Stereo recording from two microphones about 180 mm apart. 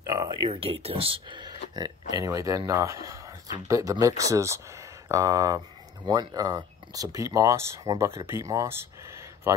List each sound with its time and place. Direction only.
0.0 s speech: 20° right (ahead or behind)